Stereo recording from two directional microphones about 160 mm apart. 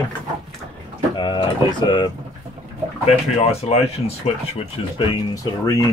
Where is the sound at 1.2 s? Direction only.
30° left (ahead or behind).